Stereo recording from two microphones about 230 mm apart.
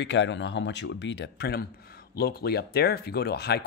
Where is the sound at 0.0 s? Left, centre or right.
Left.